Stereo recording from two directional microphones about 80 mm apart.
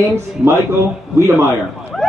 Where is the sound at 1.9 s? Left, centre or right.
Centre.